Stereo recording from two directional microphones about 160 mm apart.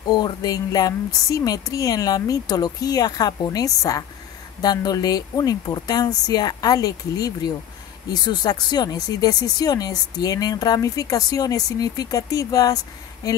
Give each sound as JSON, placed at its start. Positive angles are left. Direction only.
{"t": 0.1, "sound": "speech", "side_deg": 25}